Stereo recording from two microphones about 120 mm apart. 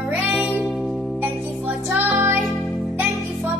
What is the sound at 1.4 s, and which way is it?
Music, 15° right (ahead or behind).